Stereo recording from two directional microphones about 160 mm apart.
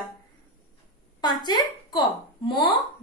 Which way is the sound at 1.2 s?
25° left (ahead or behind).